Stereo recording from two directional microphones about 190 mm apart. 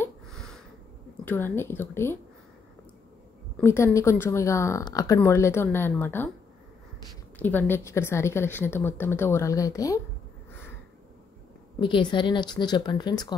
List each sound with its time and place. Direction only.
0.3 s a sound: centre (ahead or behind)
1.2 s speech: 10° left (ahead or behind)
3.6 s speech: 15° left (ahead or behind)
7.3 s speech: 10° left (ahead or behind)
11.8 s speech: 25° left (ahead or behind)